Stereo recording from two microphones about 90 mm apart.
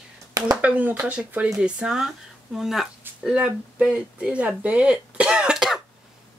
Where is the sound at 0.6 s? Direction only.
15° right (ahead or behind).